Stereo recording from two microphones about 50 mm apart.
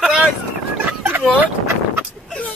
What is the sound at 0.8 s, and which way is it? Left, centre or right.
Fowl, right.